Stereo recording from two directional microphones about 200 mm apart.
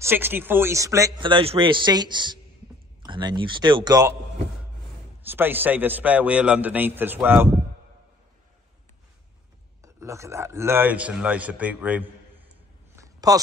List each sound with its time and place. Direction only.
0.0 s a man's voice: 10° right (ahead or behind)
5.2 s a man's voice: 10° right (ahead or behind)
9.8 s a man's voice: 15° right (ahead or behind)
12.9 s a sound: 15° right (ahead or behind)